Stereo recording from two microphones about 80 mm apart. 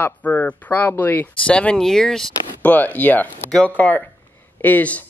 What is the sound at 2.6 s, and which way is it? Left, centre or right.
Speech, centre.